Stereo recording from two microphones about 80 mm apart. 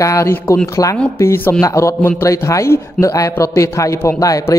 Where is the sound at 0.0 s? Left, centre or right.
Left.